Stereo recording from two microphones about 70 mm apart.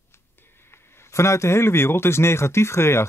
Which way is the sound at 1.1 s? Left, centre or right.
Left.